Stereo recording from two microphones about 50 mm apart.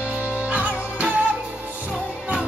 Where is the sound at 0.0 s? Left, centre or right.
Right.